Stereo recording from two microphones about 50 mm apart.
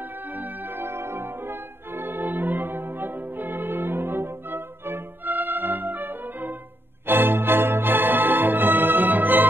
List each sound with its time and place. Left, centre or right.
0.3 s music: right